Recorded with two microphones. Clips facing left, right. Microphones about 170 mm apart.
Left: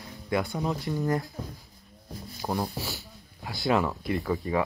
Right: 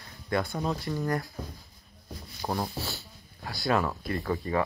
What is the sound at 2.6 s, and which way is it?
Speech, 15° left (ahead or behind).